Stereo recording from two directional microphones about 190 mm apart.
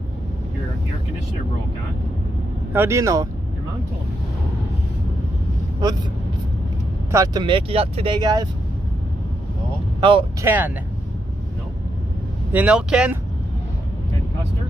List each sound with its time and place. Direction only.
2.7 s speech: 15° right (ahead or behind)
7.1 s speech: 20° right (ahead or behind)
9.9 s speech: 25° right (ahead or behind)
10.4 s speech: 10° right (ahead or behind)
12.5 s speech: 5° right (ahead or behind)